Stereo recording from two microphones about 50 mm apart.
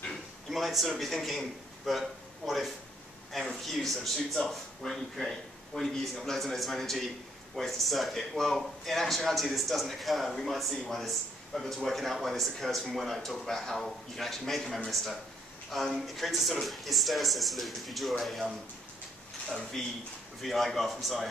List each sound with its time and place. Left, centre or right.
0.5 s a man's voice: centre
20.4 s a man's voice: centre